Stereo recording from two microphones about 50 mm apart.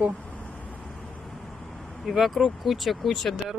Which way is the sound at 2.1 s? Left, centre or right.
Centre.